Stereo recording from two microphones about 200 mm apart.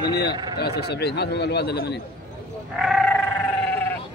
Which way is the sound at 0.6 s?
55° left (ahead or behind).